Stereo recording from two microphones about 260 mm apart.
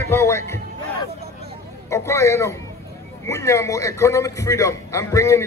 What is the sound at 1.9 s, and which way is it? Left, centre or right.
A man's voice, centre.